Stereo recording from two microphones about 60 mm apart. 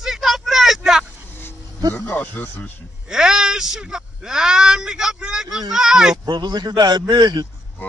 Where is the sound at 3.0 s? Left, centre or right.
Centre.